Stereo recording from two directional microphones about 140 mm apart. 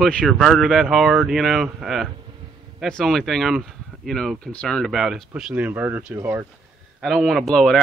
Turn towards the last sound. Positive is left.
turn(degrees=0)  # may be behind; listen again after turning